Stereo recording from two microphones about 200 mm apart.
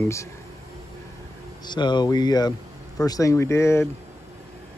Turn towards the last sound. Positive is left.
turn(degrees=15)  # may be behind; listen again after turning